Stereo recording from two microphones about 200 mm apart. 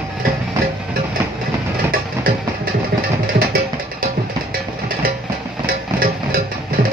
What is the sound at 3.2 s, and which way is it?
Music, 45° right (ahead or behind).